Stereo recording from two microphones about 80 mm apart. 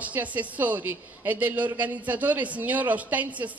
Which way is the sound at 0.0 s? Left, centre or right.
Centre.